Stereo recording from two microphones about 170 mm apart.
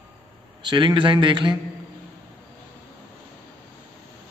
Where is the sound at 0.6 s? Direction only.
25° right (ahead or behind).